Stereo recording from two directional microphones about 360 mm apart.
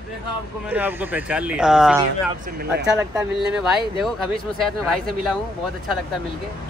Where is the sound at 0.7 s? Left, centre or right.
Centre.